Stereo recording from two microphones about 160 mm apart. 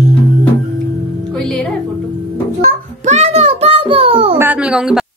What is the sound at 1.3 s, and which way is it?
Music, 5° left (ahead or behind).